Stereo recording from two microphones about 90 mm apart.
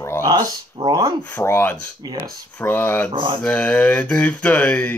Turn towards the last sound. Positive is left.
turn(degrees=20)  # may be behind; listen again after turning